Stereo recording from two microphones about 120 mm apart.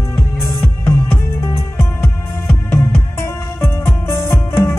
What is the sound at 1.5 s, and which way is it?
Music, 20° left (ahead or behind).